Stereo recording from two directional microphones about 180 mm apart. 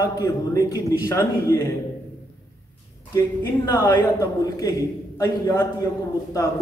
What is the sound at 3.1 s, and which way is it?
Speech, 15° left (ahead or behind).